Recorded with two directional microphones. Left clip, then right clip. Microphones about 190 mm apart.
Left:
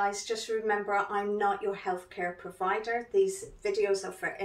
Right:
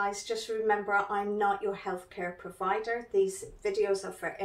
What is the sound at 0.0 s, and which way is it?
Speech, 15° left (ahead or behind).